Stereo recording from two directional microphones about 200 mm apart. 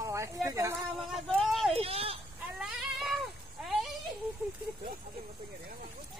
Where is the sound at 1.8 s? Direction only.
30° right (ahead or behind).